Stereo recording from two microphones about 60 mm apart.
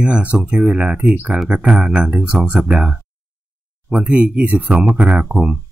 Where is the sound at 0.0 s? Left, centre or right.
Right.